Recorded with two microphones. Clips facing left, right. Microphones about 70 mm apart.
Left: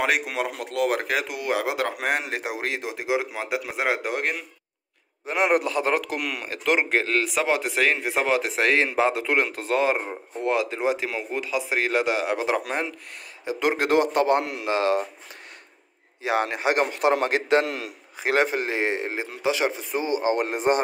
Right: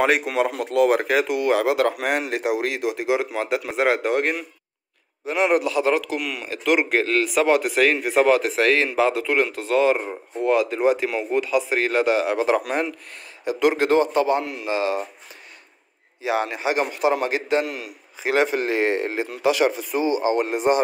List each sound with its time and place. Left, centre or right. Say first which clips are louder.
0.0 s a man's voice: right 5 dB; centre
5.2 s speech: right 2 dB; left
5.6 s a man's voice: right 3 dB; left
6.6 s speech: right 2 dB; left
7.0 s a man's voice: right 4 dB; centre
10.0 s a man's voice: right 4 dB; centre
12.5 s speech: right 4 dB; centre
13.7 s a man's voice: right 2 dB; left
16.2 s a man's voice: right 1 dB; left
18.2 s speech: right 2 dB; left; by 19.7 s centre
19.8 s a man's voice: right 3 dB; left